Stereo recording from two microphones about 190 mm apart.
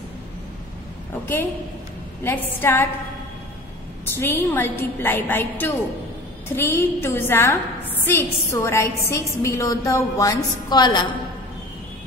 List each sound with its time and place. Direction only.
1.2 s a woman's voice: 10° left (ahead or behind)
4.1 s a woman's voice: 10° left (ahead or behind)